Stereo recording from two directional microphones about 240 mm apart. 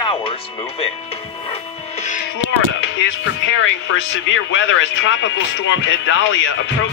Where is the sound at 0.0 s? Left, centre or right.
Left.